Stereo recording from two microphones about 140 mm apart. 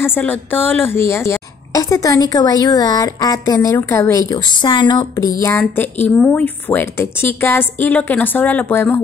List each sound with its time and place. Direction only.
0.0 s a woman's voice: 15° left (ahead or behind)